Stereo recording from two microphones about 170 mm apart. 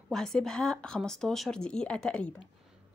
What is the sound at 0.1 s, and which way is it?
A woman's voice, 5° left (ahead or behind).